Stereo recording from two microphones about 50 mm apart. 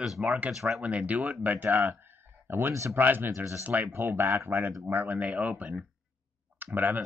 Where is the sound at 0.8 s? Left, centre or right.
Right.